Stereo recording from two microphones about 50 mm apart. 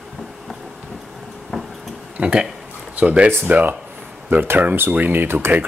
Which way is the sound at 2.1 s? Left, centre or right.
Right.